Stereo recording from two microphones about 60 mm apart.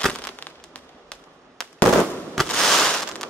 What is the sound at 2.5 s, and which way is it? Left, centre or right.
Fireworks, centre.